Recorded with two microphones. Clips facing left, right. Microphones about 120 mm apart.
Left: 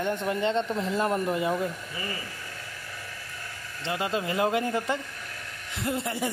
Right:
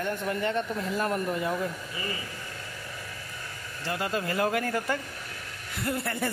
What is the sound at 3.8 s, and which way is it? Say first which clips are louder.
Speech: left 1 dB; 20° left (ahead or behind).